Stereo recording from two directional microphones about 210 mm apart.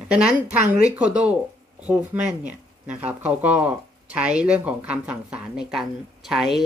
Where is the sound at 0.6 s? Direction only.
35° right (ahead or behind).